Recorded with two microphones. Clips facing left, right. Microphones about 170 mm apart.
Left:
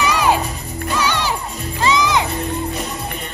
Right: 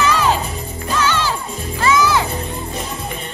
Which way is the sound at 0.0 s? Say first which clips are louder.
Even; 15° left (ahead or behind).